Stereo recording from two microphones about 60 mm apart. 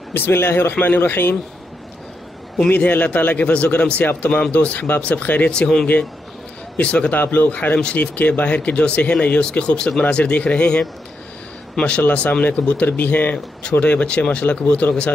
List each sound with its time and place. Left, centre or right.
0.1 s speech: left
2.7 s speech: left
5.5 s speech: centre
6.8 s a man's voice: left
13.6 s speech: centre